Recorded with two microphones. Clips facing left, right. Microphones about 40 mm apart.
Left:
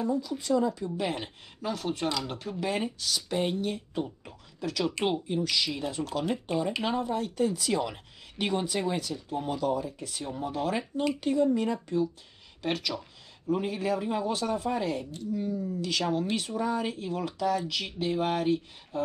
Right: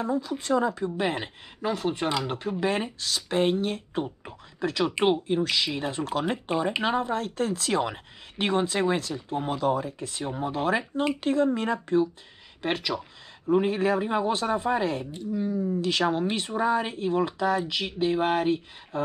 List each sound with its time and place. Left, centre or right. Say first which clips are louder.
0.0 s speech: right 2 dB; right
11.1 s speech: even; right
12.6 s speech: right 3 dB; right
13.5 s speech: right 6 dB; right
15.3 s speech: right 5 dB; right